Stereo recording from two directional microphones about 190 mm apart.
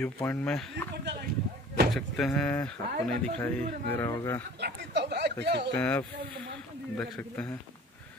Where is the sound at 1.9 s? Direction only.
5° left (ahead or behind).